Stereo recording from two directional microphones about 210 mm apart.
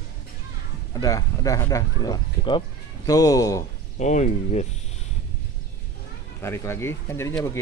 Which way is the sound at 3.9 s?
35° left (ahead or behind).